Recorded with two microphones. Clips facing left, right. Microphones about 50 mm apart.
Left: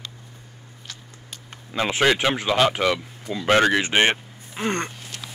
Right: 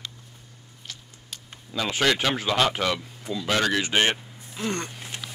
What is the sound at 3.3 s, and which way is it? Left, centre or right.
Speech, left.